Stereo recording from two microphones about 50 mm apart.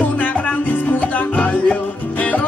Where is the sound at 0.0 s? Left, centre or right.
Left.